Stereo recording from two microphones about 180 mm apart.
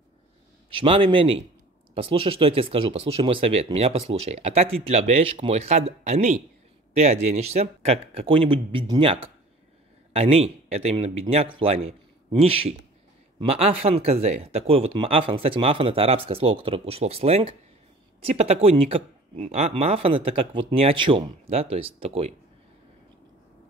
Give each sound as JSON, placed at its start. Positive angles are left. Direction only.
{"t": 0.7, "sound": "speech", "side_deg": -30}